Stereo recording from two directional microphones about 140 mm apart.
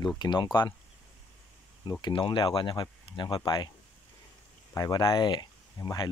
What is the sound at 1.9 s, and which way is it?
Speech, 30° left (ahead or behind).